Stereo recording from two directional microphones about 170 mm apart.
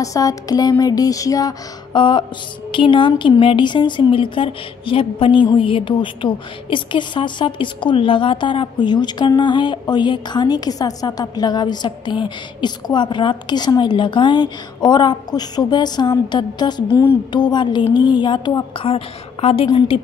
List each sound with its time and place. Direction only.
0.0 s speech: 20° left (ahead or behind)